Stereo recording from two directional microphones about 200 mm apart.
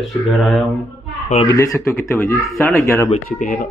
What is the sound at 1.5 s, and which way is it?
Speech, 15° left (ahead or behind).